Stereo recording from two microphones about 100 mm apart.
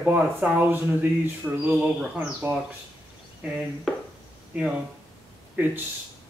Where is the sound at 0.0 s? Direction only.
15° right (ahead or behind).